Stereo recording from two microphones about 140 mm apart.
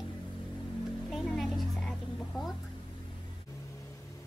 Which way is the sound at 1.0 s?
Centre (ahead or behind).